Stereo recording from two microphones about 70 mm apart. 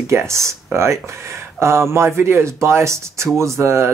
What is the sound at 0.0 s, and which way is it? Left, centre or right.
Speech, right.